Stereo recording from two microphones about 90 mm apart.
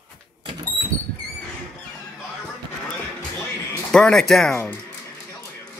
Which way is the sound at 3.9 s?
5° left (ahead or behind).